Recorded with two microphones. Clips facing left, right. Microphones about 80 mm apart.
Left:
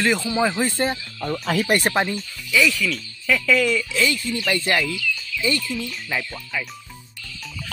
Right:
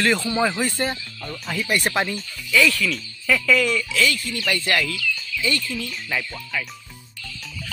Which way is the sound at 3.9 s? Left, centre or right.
Left.